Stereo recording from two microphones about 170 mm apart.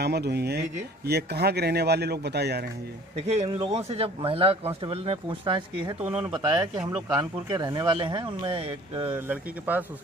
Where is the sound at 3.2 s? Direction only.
40° right (ahead or behind).